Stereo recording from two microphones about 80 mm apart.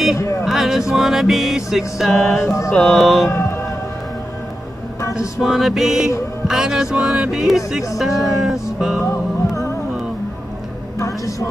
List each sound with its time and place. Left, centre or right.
0.2 s a sound: left
0.5 s a sound: centre
0.9 s music: centre
3.3 s speech: left
5.4 s speech: centre
8.0 s music: centre
9.0 s music: left
11.0 s music: left